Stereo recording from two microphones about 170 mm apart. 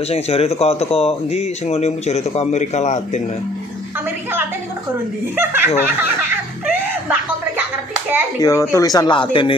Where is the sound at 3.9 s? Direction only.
10° right (ahead or behind).